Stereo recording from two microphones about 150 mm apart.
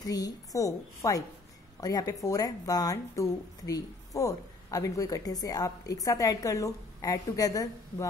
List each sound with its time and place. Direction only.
0.0 s speech: 25° left (ahead or behind)